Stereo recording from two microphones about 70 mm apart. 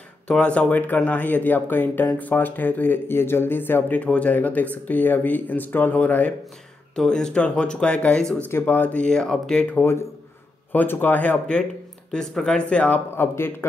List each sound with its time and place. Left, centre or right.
0.3 s speech: centre
4.0 s speech: centre
7.0 s speech: centre
8.5 s speech: left
9.1 s speech: centre
9.8 s speech: left
12.1 s speech: centre
13.1 s speech: left